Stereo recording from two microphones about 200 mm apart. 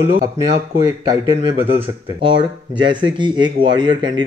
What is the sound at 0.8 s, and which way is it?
Speech, 20° right (ahead or behind).